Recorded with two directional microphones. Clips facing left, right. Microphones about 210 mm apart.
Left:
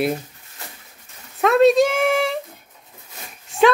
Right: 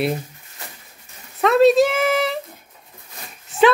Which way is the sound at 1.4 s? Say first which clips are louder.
Even; centre (ahead or behind).